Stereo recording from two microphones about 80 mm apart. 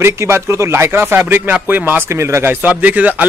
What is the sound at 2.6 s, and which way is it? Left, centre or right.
Speech, centre.